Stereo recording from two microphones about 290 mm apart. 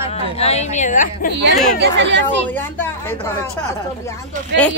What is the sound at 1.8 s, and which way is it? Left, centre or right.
Speech, right.